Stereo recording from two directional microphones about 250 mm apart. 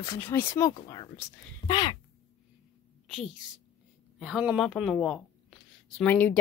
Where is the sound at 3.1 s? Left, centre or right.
Centre.